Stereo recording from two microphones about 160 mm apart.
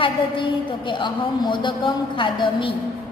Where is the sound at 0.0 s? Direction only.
30° left (ahead or behind).